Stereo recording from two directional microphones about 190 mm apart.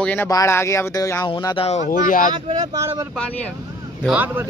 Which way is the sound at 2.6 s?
15° right (ahead or behind).